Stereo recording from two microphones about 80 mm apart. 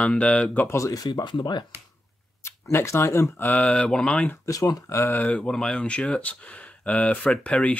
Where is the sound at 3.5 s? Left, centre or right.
Centre.